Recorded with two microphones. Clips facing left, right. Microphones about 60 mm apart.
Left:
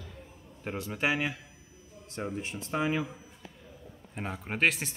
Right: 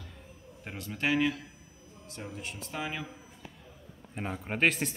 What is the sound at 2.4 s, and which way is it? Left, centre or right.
Speech, left.